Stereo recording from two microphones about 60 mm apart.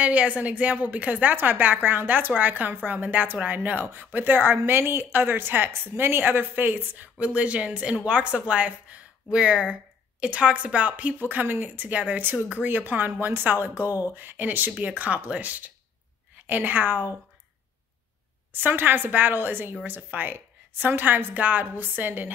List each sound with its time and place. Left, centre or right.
0.0 s a woman's voice: right
7.2 s a woman's voice: right
18.5 s a woman's voice: right